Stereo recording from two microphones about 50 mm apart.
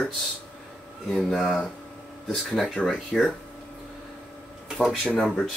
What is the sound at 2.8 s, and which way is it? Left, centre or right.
Speech, left.